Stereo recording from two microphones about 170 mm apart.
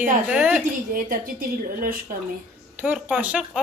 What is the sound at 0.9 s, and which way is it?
A woman's voice, 55° right (ahead or behind).